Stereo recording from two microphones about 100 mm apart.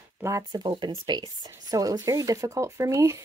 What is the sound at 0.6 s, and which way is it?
Speech, 65° right (ahead or behind).